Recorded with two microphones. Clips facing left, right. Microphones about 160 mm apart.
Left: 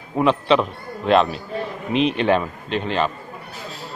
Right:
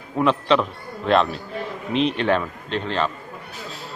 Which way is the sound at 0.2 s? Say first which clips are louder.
Left 2 dB; 10° left (ahead or behind).